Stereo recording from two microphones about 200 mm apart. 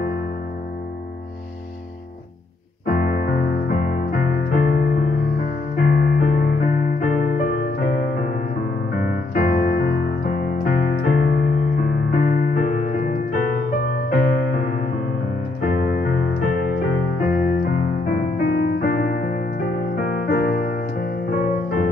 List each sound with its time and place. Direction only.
2.9 s music: 45° left (ahead or behind)
8.9 s music: 45° left (ahead or behind)
15.6 s keyboard: 50° left (ahead or behind)
17.2 s piano: 45° left (ahead or behind)
20.0 s music: 45° left (ahead or behind)